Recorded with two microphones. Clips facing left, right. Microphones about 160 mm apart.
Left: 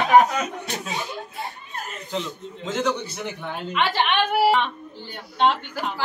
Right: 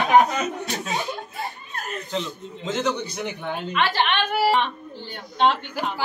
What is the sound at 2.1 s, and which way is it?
Speech, 10° left (ahead or behind).